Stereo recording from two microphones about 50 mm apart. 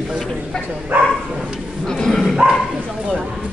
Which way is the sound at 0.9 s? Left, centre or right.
Right.